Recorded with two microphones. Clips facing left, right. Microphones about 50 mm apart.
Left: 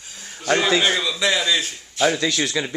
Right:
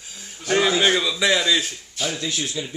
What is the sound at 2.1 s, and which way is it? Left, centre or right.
Speech, left.